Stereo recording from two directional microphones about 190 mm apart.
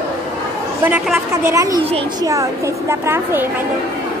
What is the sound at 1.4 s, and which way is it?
A woman's voice, 15° right (ahead or behind).